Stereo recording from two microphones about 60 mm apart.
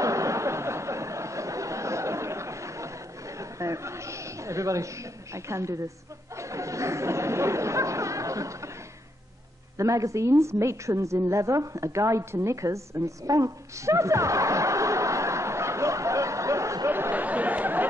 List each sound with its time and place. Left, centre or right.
0.0 s a sound: right
6.3 s chatter: right
9.8 s a woman's voice: right
17.1 s chatter: right